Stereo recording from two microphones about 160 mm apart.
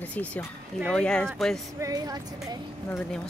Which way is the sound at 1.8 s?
25° right (ahead or behind).